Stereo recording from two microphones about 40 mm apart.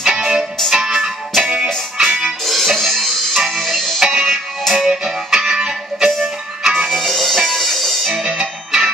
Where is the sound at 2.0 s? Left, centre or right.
Centre.